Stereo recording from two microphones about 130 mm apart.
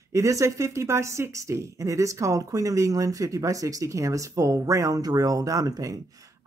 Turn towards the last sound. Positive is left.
turn(degrees=-25)  # may be behind; listen again after turning